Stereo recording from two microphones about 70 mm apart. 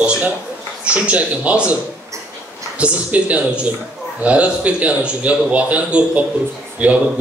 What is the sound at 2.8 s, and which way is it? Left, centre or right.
Speech, centre.